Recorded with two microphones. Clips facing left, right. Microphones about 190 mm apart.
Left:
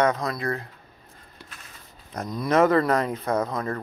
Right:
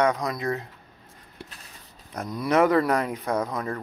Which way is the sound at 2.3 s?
10° right (ahead or behind).